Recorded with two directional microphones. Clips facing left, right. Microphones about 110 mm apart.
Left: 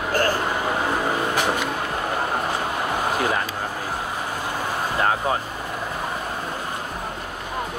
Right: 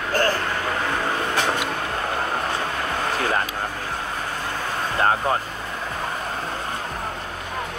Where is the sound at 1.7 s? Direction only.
20° left (ahead or behind).